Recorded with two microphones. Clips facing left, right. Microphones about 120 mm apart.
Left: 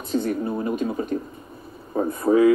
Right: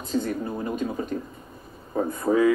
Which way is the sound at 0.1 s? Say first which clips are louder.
Left 3 dB; 45° left (ahead or behind).